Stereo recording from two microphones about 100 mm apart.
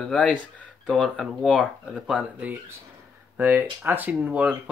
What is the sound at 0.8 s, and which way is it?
Speech, 5° right (ahead or behind).